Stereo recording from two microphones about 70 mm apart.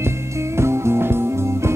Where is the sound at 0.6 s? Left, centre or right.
Right.